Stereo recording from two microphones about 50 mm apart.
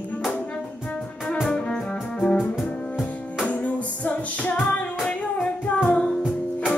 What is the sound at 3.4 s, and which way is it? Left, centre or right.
Music, left.